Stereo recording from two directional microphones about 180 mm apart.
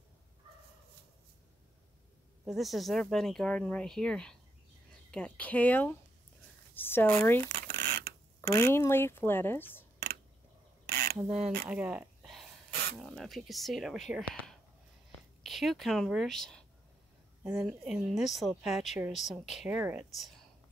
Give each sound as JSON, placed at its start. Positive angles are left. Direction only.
{"t": 2.4, "sound": "a woman's voice", "side_deg": 0}
{"t": 7.4, "sound": "a sound", "side_deg": -60}
{"t": 8.5, "sound": "a woman's voice", "side_deg": 15}
{"t": 10.9, "sound": "mechanisms", "side_deg": -55}
{"t": 11.1, "sound": "a woman's voice", "side_deg": -5}
{"t": 11.6, "sound": "a sound", "side_deg": -5}
{"t": 13.0, "sound": "speech", "side_deg": 0}
{"t": 17.4, "sound": "a woman's voice", "side_deg": -15}
{"t": 17.6, "sound": "a woman's voice", "side_deg": -5}